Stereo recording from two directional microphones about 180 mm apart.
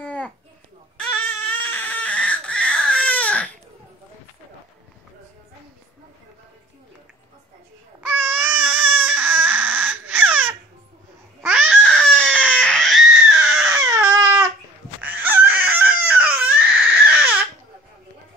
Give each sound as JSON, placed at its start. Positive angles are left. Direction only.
{"t": 0.0, "sound": "a sound", "side_deg": 10}
{"t": 0.9, "sound": "baby cry", "side_deg": 10}
{"t": 8.2, "sound": "baby cry", "side_deg": -10}
{"t": 11.4, "sound": "a sound", "side_deg": -5}
{"t": 12.4, "sound": "baby cry", "side_deg": 5}
{"t": 13.8, "sound": "baby cry", "side_deg": -20}
{"t": 15.0, "sound": "crying", "side_deg": -10}